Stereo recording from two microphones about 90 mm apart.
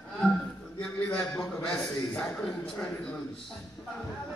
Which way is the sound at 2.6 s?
15° left (ahead or behind).